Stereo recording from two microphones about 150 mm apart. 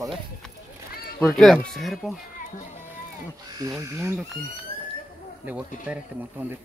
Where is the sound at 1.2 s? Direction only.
Centre (ahead or behind).